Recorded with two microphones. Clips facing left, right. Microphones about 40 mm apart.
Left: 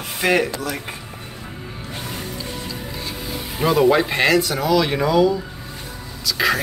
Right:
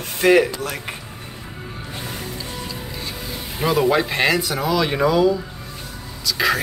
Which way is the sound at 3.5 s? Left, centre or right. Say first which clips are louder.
Left 2 dB; centre.